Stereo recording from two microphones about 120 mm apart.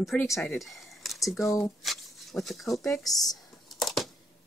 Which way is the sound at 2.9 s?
30° left (ahead or behind).